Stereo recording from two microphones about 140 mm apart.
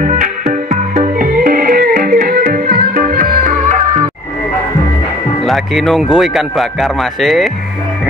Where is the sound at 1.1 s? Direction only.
90° right; by 3.7 s 70° right (ahead or behind).